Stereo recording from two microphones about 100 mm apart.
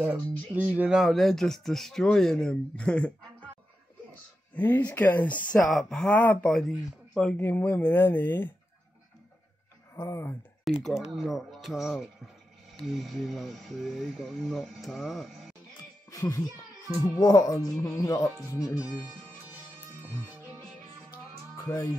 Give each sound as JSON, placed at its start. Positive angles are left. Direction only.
{"t": 0.0, "sound": "speech", "side_deg": -15}
{"t": 0.8, "sound": "speech", "side_deg": -5}
{"t": 4.6, "sound": "speech", "side_deg": 15}
{"t": 5.6, "sound": "speech", "side_deg": 5}
{"t": 7.3, "sound": "speech", "side_deg": 20}
{"t": 9.9, "sound": "speech", "side_deg": 30}
{"t": 10.6, "sound": "speech", "side_deg": 0}
{"t": 16.1, "sound": "music", "side_deg": 30}
{"t": 17.0, "sound": "speech", "side_deg": 35}
{"t": 18.8, "sound": "speech", "side_deg": -10}